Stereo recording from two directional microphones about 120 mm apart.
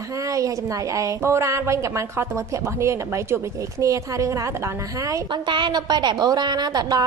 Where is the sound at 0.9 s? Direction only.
25° right (ahead or behind).